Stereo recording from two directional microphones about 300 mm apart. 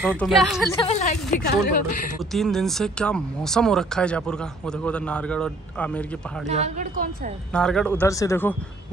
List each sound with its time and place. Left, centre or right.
0.2 s speech: centre
0.7 s a woman's voice: left
2.3 s speech: centre
6.4 s a woman's voice: right
7.5 s speech: centre